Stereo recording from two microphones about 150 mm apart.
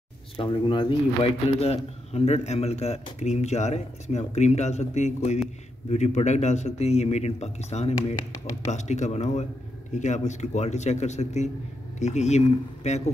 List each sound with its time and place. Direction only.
0.4 s a man's voice: 35° left (ahead or behind); by 13.1 s 50° left (ahead or behind)